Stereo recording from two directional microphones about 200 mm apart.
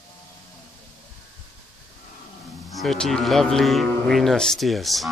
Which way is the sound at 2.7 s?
Centre (ahead or behind).